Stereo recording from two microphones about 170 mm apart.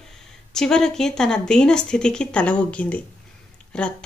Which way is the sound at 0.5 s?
5° left (ahead or behind).